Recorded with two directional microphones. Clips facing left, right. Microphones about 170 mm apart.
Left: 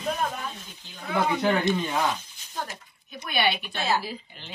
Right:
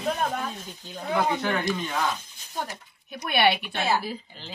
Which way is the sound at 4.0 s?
45° right (ahead or behind).